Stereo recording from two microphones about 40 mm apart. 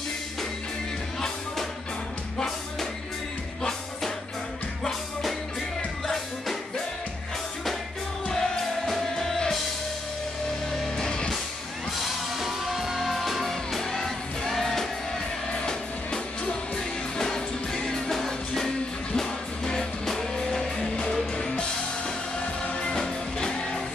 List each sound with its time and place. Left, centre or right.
2.3 s music: centre
6.0 s music: centre
8.3 s music: centre
10.7 s music: centre
12.4 s music: centre
15.5 s music: left
22.8 s music: centre